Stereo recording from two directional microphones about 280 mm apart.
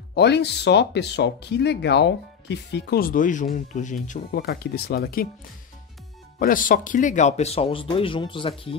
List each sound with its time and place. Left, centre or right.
0.1 s speech: left
6.4 s speech: left